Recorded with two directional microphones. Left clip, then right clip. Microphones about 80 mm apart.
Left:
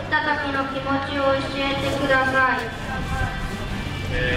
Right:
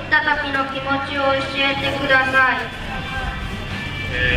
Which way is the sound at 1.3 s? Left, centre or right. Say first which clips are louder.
Right 4 dB; right.